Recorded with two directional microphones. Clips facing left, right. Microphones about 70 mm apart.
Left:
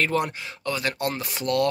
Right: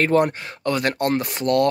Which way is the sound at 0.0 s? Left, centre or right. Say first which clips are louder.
Right 6 dB; right.